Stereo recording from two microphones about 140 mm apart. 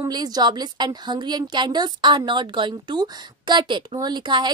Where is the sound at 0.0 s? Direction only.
30° right (ahead or behind).